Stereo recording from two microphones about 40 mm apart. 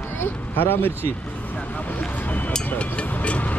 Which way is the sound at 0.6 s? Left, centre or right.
Left.